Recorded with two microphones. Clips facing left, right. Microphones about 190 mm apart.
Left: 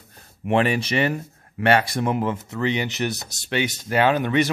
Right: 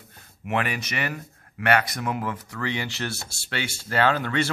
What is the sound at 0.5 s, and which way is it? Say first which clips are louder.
Speech: left 7 dB; 30° left (ahead or behind).